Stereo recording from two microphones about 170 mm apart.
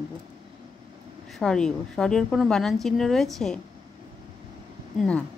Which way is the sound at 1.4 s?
5° left (ahead or behind).